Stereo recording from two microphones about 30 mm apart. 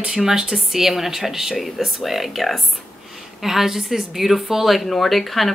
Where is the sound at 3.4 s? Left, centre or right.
Centre.